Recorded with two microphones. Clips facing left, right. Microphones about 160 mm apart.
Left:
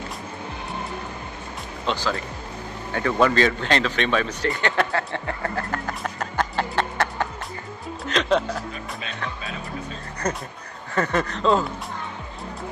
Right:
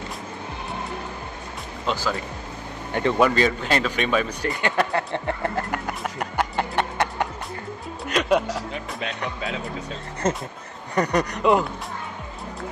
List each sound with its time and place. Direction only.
1.9 s speech: 10° right (ahead or behind)
2.9 s speech: 20° right (ahead or behind)
3.2 s speech: 10° right (ahead or behind)
10.2 s speech: 25° right (ahead or behind)